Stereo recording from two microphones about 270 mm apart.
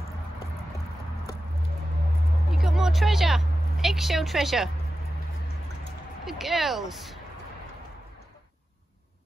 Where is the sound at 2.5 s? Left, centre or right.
Centre.